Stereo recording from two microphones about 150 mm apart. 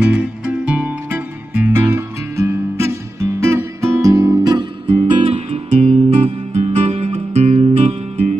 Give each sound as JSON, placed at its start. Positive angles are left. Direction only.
{"t": 0.0, "sound": "music", "side_deg": -10}
{"t": 4.9, "sound": "music", "side_deg": -40}